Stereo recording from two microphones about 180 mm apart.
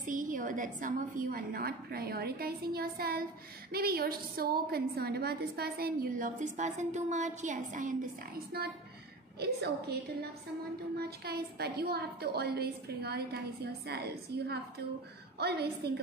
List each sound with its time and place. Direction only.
0.0 s a woman's voice: 45° right (ahead or behind)
8.5 s a woman's voice: 60° right (ahead or behind)
11.0 s a woman's voice: 60° right (ahead or behind)